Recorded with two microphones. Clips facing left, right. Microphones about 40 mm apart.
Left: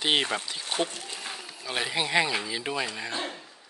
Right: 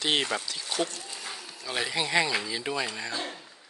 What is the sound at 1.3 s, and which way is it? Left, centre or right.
Speech, centre.